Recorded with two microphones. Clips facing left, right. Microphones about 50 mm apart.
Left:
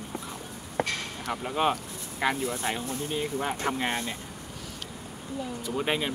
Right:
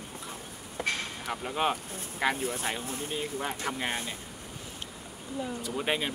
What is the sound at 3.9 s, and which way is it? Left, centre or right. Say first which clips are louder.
Speech: left 3 dB; left.